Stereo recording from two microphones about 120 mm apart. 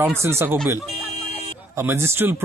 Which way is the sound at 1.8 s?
20° right (ahead or behind).